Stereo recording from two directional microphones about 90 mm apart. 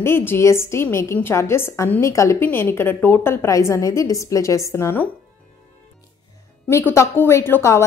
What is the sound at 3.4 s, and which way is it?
A woman's voice, 35° left (ahead or behind).